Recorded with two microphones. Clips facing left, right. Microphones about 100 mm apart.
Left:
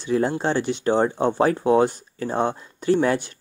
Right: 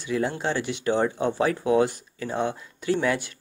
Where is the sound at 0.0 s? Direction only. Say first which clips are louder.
Left 4 dB; 35° left (ahead or behind).